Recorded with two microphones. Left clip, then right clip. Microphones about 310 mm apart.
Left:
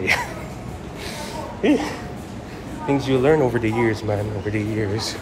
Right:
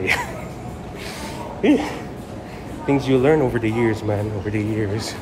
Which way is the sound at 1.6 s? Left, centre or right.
Centre.